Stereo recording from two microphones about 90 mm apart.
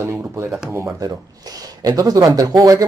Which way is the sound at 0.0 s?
25° right (ahead or behind).